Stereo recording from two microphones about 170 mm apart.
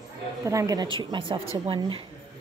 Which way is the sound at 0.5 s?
20° right (ahead or behind).